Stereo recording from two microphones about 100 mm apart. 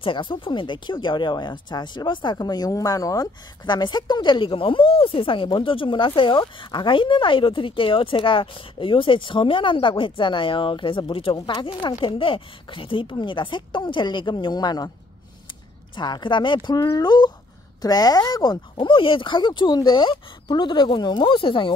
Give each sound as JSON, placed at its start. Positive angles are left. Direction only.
{"t": 0.0, "sound": "a woman's voice", "side_deg": 55}
{"t": 16.0, "sound": "speech", "side_deg": 50}